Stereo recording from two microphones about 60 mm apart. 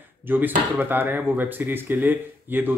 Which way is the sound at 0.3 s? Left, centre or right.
Right.